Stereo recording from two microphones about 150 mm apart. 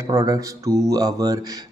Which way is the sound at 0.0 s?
25° right (ahead or behind).